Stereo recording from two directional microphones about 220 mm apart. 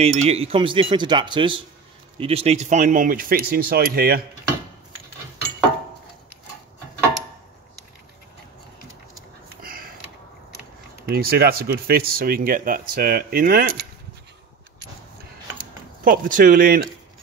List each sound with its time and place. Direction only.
0.0 s speech: 30° right (ahead or behind)
9.6 s sniff: 40° right (ahead or behind)
11.1 s speech: 45° right (ahead or behind)
16.0 s speech: 40° right (ahead or behind)